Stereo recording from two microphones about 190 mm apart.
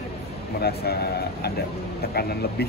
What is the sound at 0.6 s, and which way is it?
Speech, 55° left (ahead or behind).